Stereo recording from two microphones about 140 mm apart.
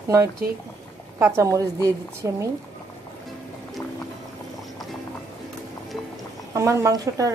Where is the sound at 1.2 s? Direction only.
20° right (ahead or behind).